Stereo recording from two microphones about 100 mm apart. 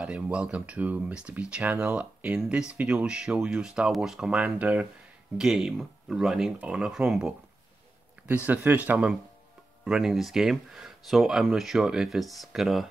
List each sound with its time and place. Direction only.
0.0 s speech: 10° right (ahead or behind)
8.5 s speech: 15° right (ahead or behind)